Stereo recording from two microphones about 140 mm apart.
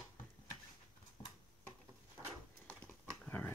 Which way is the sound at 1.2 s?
25° left (ahead or behind).